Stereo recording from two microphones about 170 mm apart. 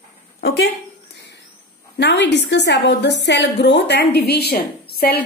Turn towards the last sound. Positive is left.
turn(degrees=65)  # may be behind; listen again after turning